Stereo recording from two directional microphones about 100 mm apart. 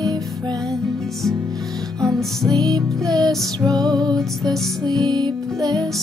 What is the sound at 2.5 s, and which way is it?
Music, 40° right (ahead or behind).